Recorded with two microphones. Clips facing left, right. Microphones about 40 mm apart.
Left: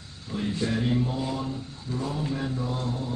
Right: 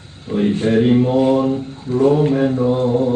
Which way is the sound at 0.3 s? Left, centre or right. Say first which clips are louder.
Right 12 dB; right.